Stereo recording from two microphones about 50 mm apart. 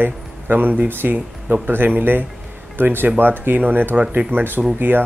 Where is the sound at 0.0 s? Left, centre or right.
Right.